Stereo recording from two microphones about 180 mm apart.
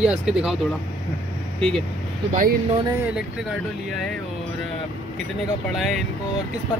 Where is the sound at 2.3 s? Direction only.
50° right (ahead or behind).